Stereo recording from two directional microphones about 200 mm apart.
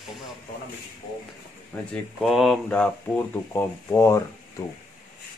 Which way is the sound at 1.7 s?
5° left (ahead or behind).